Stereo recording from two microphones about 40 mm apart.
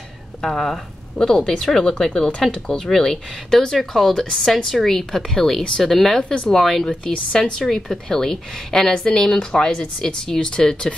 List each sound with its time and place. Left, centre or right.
0.4 s speech: centre
2.9 s speech: centre
6.2 s speech: left